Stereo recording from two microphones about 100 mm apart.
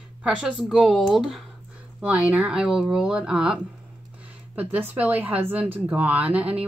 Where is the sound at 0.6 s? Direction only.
Centre (ahead or behind).